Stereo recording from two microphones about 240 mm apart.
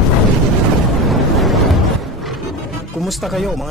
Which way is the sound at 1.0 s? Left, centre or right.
Centre.